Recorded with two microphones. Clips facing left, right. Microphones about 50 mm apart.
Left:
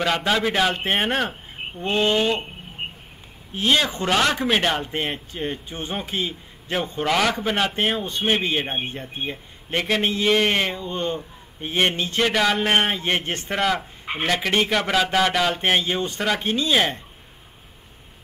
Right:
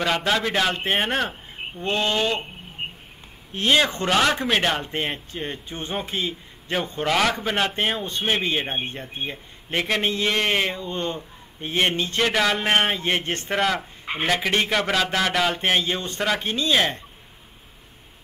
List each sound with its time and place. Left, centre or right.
0.0 s a man's voice: centre
3.6 s a man's voice: centre
5.3 s speech: centre
7.0 s a man's voice: centre
10.9 s a man's voice: centre
13.2 s a man's voice: left
13.5 s a man's voice: centre
15.8 s a man's voice: left